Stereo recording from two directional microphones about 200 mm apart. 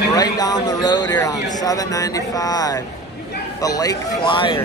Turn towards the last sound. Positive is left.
turn(degrees=25)  # may be behind; listen again after turning